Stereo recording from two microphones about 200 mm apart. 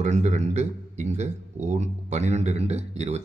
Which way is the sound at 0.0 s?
35° right (ahead or behind).